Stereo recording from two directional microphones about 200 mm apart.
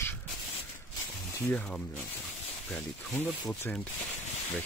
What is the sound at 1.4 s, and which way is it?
Speech, 10° left (ahead or behind).